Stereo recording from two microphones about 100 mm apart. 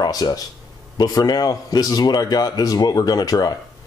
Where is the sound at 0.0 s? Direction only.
40° left (ahead or behind).